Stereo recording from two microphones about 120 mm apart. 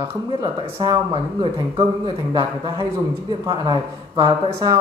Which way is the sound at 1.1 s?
55° right (ahead or behind).